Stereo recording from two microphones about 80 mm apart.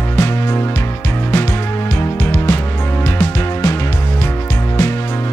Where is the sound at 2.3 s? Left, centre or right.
Left.